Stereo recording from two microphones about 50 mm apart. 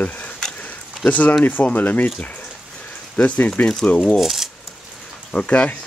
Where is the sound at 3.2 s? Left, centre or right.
Left.